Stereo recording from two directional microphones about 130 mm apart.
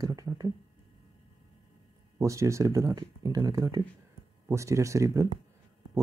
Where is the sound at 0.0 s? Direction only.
30° right (ahead or behind).